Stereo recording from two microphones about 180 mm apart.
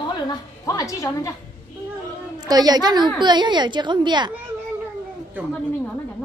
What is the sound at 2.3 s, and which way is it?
A woman's voice, 20° right (ahead or behind).